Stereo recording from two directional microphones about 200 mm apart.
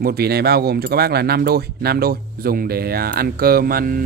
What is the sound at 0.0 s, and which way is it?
Speech, 50° right (ahead or behind).